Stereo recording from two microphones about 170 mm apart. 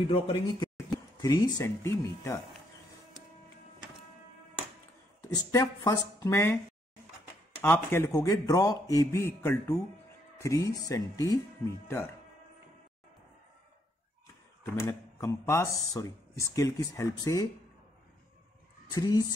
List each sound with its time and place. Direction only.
0.6 s speech: 20° left (ahead or behind)
5.3 s a man's voice: 20° left (ahead or behind)
7.6 s a man's voice: 15° left (ahead or behind)
14.8 s speech: 20° left (ahead or behind)
18.9 s speech: 20° left (ahead or behind)